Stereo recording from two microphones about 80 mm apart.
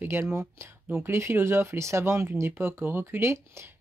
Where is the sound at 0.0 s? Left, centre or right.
Right.